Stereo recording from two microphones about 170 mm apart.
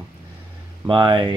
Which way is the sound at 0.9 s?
30° right (ahead or behind).